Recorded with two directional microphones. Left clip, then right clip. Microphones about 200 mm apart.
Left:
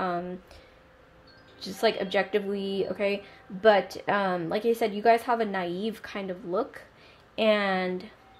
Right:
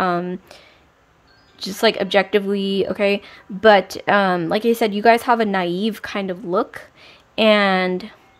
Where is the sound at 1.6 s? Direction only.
40° right (ahead or behind).